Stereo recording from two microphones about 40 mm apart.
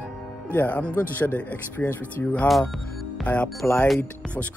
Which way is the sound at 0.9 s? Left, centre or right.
Left.